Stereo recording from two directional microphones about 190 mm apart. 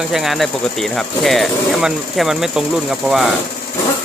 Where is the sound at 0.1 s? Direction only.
Centre (ahead or behind).